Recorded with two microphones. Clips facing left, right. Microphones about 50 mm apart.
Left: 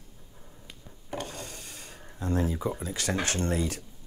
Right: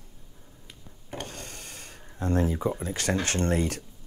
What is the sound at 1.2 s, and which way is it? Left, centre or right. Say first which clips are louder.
Wood: left 1 dB; right.